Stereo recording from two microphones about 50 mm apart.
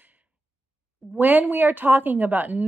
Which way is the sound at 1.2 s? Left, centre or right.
Right.